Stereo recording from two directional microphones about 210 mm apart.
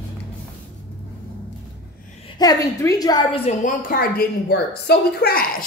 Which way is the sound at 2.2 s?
20° left (ahead or behind).